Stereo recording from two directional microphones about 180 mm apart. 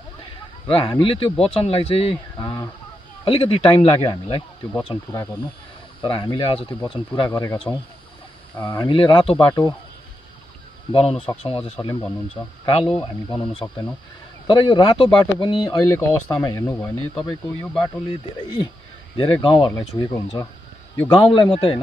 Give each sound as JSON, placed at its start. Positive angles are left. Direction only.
{"t": 0.7, "sound": "speech", "side_deg": 30}
{"t": 2.3, "sound": "speech", "side_deg": 20}
{"t": 6.0, "sound": "speech", "side_deg": 25}
{"t": 8.5, "sound": "speech", "side_deg": 15}
{"t": 8.8, "sound": "speech", "side_deg": 30}
{"t": 10.9, "sound": "speech", "side_deg": 30}
{"t": 18.0, "sound": "speech", "side_deg": 25}
{"t": 19.7, "sound": "speech", "side_deg": 15}